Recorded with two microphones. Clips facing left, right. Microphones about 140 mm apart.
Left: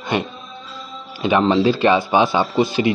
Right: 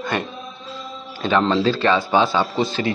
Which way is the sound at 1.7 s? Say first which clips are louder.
Left 3 dB; 15° left (ahead or behind).